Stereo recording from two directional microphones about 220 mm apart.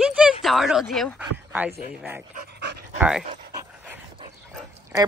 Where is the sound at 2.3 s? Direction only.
45° right (ahead or behind).